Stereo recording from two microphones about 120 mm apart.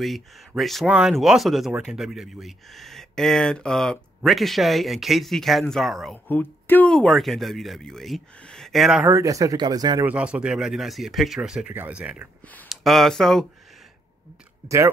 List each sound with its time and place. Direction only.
0.6 s speech: centre (ahead or behind)
6.2 s speech: 15° left (ahead or behind); by 9.0 s centre (ahead or behind)
9.0 s speech: 25° right (ahead or behind)
10.0 s speech: 10° right (ahead or behind)
12.6 s speech: centre (ahead or behind)